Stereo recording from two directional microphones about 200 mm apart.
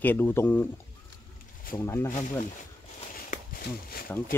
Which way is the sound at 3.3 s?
45° left (ahead or behind).